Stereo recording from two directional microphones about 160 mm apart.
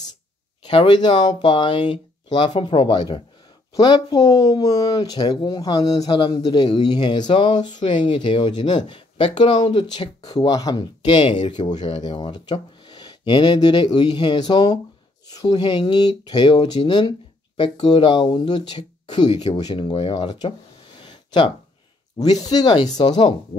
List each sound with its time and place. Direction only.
0.7 s speech: 30° left (ahead or behind)
21.0 s a sound: 30° left (ahead or behind)
22.2 s speech: 25° left (ahead or behind)